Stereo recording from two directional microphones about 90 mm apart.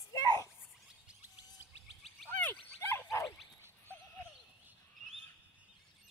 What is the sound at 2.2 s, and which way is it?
Dog, 20° left (ahead or behind).